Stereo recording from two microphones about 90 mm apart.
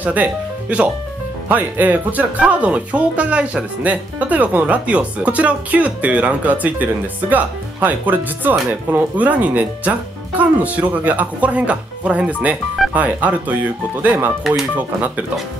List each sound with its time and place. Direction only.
0.0 s speech: 15° right (ahead or behind)